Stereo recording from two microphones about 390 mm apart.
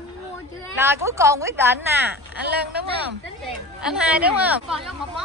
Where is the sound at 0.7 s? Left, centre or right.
Centre.